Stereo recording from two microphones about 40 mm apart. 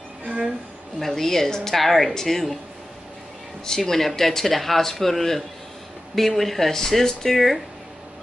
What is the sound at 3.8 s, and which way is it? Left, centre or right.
A man's voice, centre.